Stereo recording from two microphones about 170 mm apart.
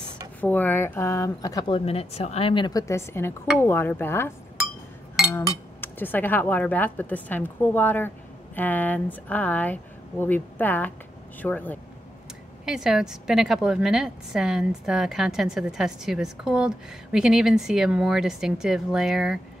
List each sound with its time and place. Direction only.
0.4 s speech: 10° left (ahead or behind)
1.9 s a woman's voice: 35° left (ahead or behind); by 4.3 s 10° left (ahead or behind)
5.3 s speech: 10° left (ahead or behind)
12.6 s a woman's voice: 5° right (ahead or behind)